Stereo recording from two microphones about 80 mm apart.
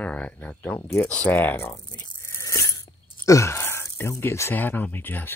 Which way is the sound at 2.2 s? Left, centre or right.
Left.